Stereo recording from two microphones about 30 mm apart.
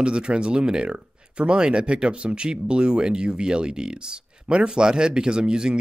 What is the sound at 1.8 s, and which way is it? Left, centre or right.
Speech, right.